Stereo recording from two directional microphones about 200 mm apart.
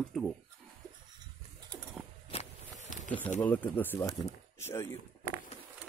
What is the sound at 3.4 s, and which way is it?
Speech, 10° left (ahead or behind).